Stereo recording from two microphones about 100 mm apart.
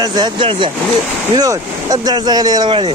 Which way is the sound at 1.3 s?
40° right (ahead or behind).